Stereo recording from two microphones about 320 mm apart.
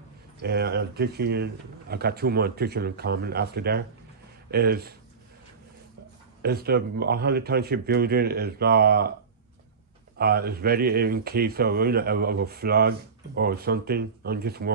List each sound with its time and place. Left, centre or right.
0.4 s speech: right
6.4 s speech: right
10.1 s speech: right